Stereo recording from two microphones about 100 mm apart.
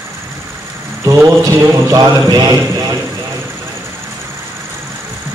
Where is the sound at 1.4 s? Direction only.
35° right (ahead or behind).